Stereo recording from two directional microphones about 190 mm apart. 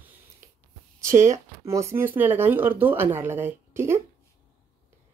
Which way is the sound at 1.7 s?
15° right (ahead or behind).